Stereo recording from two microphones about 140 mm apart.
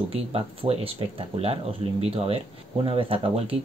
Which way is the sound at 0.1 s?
45° right (ahead or behind).